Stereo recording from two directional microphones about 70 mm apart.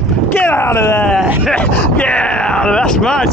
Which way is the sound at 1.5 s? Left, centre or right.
Centre.